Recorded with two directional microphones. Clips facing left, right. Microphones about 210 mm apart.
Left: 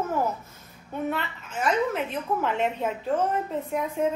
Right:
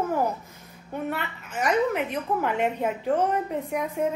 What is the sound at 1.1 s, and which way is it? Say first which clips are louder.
A woman's voice: left 1 dB; 10° right (ahead or behind).